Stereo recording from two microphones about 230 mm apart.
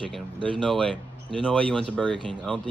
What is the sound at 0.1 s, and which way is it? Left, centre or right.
Speech, centre.